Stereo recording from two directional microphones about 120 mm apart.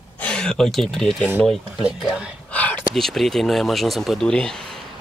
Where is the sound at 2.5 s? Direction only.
10° left (ahead or behind).